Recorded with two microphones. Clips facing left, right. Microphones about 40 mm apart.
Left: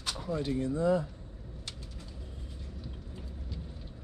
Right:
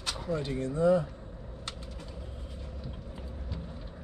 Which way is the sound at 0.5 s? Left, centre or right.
Right.